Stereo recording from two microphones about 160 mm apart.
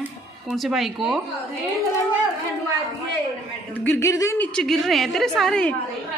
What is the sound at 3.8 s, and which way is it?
Speech, 15° left (ahead or behind).